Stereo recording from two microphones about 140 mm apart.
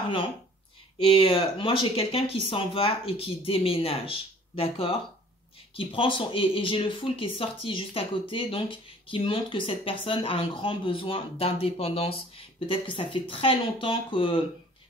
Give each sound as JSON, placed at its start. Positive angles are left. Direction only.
{"t": 0.9, "sound": "speech", "side_deg": 40}